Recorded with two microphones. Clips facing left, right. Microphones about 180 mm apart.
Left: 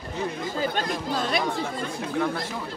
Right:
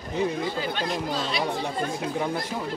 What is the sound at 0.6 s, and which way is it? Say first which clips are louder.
Speech: left 1 dB; 50° left (ahead or behind).